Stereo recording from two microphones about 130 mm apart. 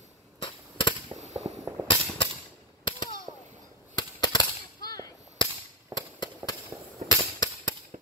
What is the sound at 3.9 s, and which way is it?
Cap gun, 30° left (ahead or behind).